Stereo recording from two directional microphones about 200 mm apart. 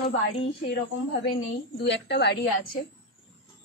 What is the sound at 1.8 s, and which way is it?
Speech, 60° left (ahead or behind).